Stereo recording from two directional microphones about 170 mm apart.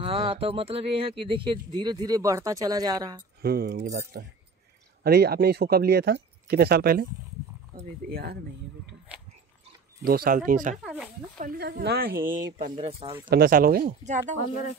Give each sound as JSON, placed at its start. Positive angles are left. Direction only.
{"t": 0.0, "sound": "speech", "side_deg": -35}
{"t": 3.4, "sound": "speech", "side_deg": -65}
{"t": 8.1, "sound": "speech", "side_deg": -65}
{"t": 9.1, "sound": "dog", "side_deg": -5}
{"t": 10.0, "sound": "speech", "side_deg": -60}
{"t": 10.8, "sound": "speech", "side_deg": 0}
{"t": 11.3, "sound": "speech", "side_deg": -60}
{"t": 12.7, "sound": "speech", "side_deg": -30}
{"t": 13.3, "sound": "speech", "side_deg": -60}